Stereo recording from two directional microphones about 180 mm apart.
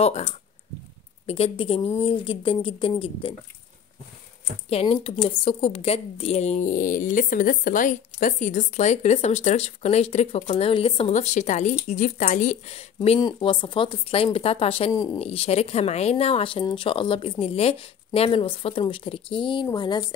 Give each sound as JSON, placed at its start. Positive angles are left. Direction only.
{"t": 1.2, "sound": "a woman's voice", "side_deg": 35}
{"t": 4.6, "sound": "a woman's voice", "side_deg": 30}